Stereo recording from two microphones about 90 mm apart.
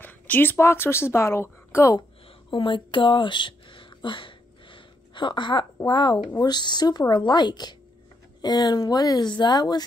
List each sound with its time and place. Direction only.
0.0 s speech: 20° left (ahead or behind)
2.5 s a sound: 65° left (ahead or behind)
5.9 s speech: 55° left (ahead or behind)